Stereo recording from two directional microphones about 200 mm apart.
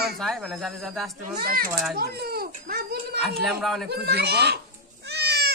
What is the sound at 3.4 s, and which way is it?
Speech, centre (ahead or behind).